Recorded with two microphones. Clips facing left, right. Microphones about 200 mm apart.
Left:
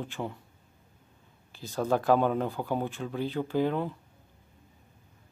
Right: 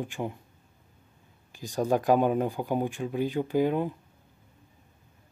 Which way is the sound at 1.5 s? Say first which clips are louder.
Right 2 dB; 15° right (ahead or behind).